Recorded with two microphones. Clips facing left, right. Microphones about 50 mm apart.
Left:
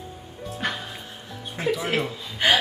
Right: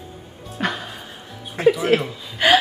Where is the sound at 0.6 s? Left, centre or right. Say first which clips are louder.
Right 5 dB; right.